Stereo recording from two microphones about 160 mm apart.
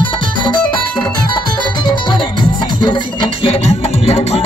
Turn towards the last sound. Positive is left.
turn(degrees=40)  # may be behind; listen again after turning